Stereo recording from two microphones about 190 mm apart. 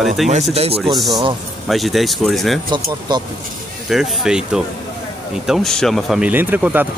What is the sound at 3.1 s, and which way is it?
Speech, 20° right (ahead or behind).